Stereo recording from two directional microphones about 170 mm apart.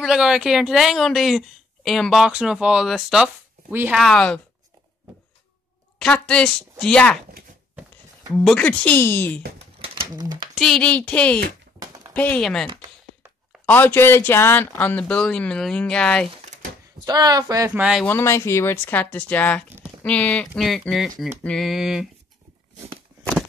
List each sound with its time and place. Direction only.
0.0 s a woman's voice: 5° right (ahead or behind)
4.0 s a woman's voice: 5° left (ahead or behind)
5.9 s a woman's voice: 5° left (ahead or behind)
8.4 s speech: 5° left (ahead or behind)
9.6 s bird: 35° right (ahead or behind)
10.5 s a woman's voice: centre (ahead or behind)
13.7 s speech: 10° left (ahead or behind)
17.0 s speech: 20° right (ahead or behind)
17.7 s a woman's voice: 5° right (ahead or behind)
18.0 s a woman's voice: 15° left (ahead or behind); by 22.0 s centre (ahead or behind)